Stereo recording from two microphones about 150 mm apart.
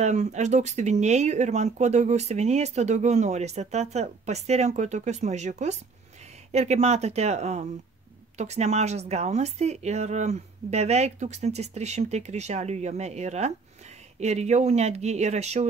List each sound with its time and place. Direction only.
0.0 s speech: 50° right (ahead or behind)